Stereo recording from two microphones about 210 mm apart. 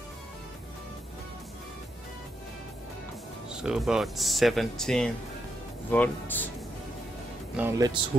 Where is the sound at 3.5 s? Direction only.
5° right (ahead or behind).